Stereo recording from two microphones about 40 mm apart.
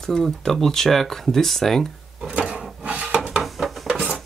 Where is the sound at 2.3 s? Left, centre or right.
Right.